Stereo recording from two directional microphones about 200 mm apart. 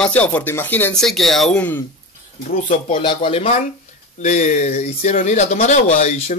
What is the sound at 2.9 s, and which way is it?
Speech, 25° left (ahead or behind).